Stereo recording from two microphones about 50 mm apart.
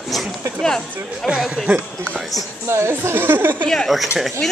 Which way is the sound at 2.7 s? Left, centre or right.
Right.